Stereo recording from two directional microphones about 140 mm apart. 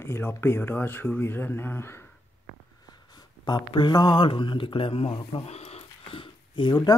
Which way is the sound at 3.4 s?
35° left (ahead or behind).